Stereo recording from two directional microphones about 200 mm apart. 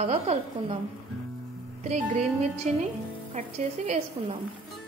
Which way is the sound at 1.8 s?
30° right (ahead or behind).